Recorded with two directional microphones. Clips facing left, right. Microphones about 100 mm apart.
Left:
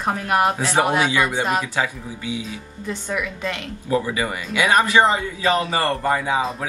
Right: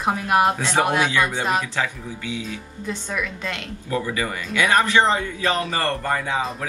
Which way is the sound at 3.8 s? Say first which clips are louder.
Left 3 dB; 20° left (ahead or behind).